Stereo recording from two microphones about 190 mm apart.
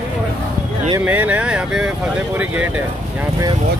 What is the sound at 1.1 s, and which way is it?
Speech, 10° right (ahead or behind).